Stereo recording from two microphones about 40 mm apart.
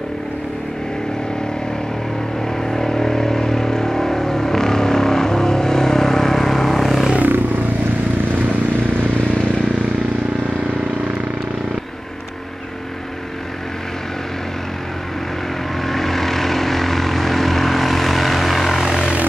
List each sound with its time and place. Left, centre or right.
2.5 s vehicle: centre
7.2 s vehicle: right
15.8 s vehicle: centre
18.8 s vehicle: centre